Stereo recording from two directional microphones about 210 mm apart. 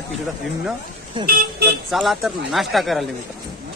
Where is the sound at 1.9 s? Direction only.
Centre (ahead or behind).